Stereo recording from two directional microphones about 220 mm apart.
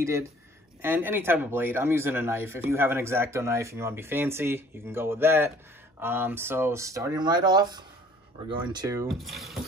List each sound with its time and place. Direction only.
0.0 s speech: 15° right (ahead or behind)
9.2 s speech: centre (ahead or behind)